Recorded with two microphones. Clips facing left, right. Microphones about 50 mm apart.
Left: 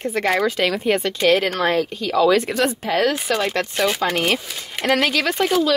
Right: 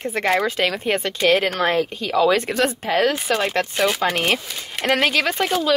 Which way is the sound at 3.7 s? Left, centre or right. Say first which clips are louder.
Left 1 dB; centre.